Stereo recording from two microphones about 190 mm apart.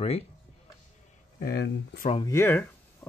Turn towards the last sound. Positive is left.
turn(degrees=10)  # may be behind; listen again after turning